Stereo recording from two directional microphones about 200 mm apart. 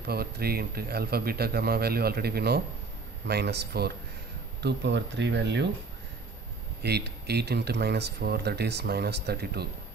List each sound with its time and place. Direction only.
0.0 s a man's voice: 50° right (ahead or behind)
6.8 s speech: 55° right (ahead or behind)